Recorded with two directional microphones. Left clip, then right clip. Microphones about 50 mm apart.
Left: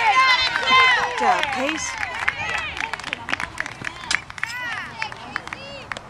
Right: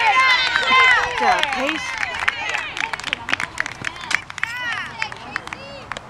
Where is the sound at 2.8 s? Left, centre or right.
Right.